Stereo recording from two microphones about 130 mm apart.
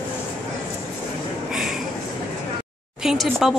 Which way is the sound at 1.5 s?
5° right (ahead or behind).